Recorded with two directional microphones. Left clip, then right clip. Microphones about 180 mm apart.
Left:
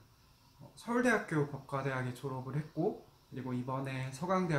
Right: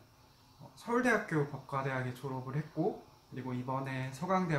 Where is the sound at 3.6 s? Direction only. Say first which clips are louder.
Right 4 dB; 20° left (ahead or behind).